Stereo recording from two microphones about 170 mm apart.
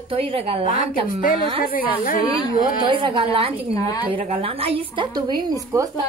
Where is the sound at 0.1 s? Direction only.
35° right (ahead or behind).